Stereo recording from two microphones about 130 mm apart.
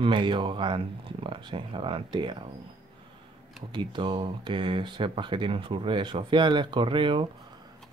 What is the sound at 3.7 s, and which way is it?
Speech, 35° right (ahead or behind).